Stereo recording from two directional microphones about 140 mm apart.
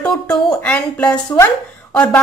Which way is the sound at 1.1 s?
30° left (ahead or behind).